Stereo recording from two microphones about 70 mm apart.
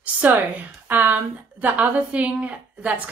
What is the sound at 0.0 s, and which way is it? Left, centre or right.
A woman's voice, right.